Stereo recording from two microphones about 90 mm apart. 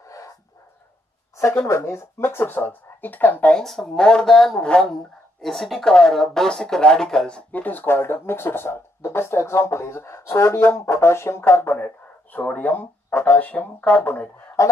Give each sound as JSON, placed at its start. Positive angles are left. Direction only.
{"t": 0.0, "sound": "dog", "side_deg": 40}
{"t": 1.3, "sound": "a sound", "side_deg": 30}
{"t": 1.7, "sound": "speech", "side_deg": 35}
{"t": 3.6, "sound": "speech", "side_deg": 5}
{"t": 14.6, "sound": "speech", "side_deg": 35}